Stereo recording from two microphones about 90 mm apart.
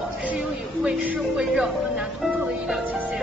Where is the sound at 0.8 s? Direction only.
10° right (ahead or behind).